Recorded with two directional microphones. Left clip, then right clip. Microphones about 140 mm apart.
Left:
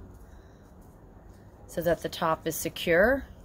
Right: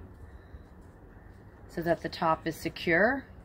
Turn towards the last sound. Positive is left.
turn(degrees=45)  # may be behind; listen again after turning